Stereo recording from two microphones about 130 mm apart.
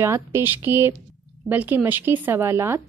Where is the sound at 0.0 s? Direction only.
20° right (ahead or behind).